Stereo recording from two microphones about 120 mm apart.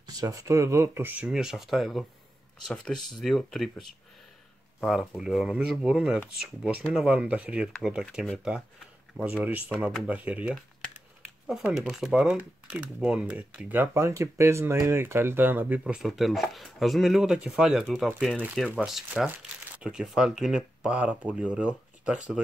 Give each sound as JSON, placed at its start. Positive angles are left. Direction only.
{"t": 0.0, "sound": "speech", "side_deg": -30}
{"t": 15.8, "sound": "speech", "side_deg": -5}